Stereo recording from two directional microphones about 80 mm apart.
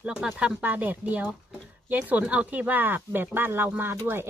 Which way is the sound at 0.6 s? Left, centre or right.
Right.